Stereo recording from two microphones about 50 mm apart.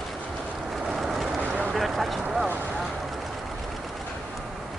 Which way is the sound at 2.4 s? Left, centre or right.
Right.